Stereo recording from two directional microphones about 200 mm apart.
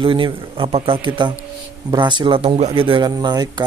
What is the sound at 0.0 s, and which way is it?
Speech, 25° right (ahead or behind).